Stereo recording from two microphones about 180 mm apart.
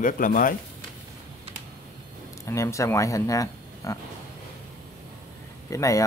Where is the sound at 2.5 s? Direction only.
15° left (ahead or behind).